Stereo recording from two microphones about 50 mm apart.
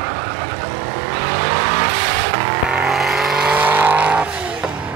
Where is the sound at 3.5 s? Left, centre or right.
Right.